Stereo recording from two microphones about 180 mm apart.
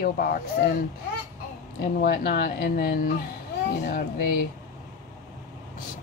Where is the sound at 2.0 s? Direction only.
55° left (ahead or behind).